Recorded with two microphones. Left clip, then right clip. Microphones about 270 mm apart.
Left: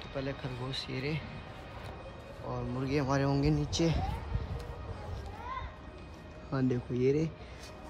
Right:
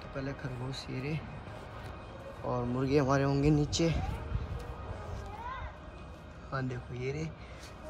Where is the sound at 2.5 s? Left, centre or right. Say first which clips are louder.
Right 4 dB; centre.